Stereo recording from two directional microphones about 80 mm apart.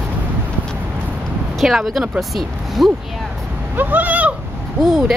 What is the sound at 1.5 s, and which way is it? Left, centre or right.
A woman's voice, centre.